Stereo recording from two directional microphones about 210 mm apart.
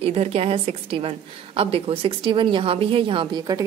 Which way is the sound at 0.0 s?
30° right (ahead or behind).